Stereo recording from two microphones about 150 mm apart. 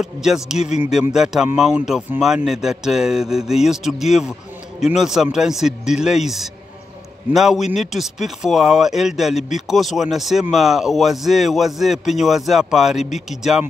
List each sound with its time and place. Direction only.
0.0 s speech: 5° right (ahead or behind)
0.6 s speech: 50° left (ahead or behind)
1.1 s speech: 5° right (ahead or behind)